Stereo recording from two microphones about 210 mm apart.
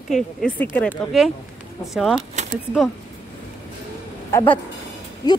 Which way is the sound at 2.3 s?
30° right (ahead or behind).